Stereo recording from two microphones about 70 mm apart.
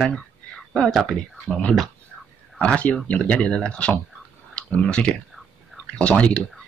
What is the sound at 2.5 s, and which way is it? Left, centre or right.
Speech, centre.